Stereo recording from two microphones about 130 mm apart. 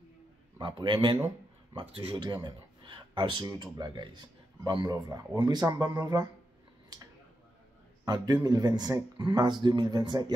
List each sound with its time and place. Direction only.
0.6 s speech: 40° right (ahead or behind)
8.0 s speech: 30° right (ahead or behind)